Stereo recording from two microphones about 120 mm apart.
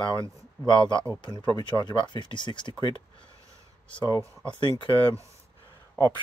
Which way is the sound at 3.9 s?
40° left (ahead or behind).